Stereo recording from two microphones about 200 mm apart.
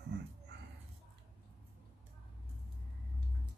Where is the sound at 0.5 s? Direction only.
55° right (ahead or behind).